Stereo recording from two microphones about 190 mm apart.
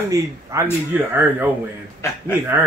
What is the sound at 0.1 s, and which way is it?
Speech, 15° right (ahead or behind).